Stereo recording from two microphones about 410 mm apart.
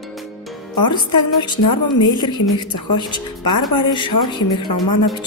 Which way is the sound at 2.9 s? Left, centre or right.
Centre.